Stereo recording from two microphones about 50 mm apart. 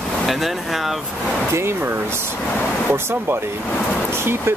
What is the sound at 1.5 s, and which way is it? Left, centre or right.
Speech, right.